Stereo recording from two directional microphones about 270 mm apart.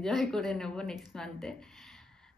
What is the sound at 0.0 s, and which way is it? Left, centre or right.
Speech, centre.